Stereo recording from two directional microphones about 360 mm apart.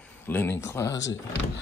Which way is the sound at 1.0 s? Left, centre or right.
Left.